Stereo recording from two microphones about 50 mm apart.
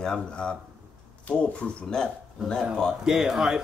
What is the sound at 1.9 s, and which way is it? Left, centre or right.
Speech, centre.